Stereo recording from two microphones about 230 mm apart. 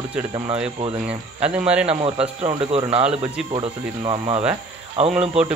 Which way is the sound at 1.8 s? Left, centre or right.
Right.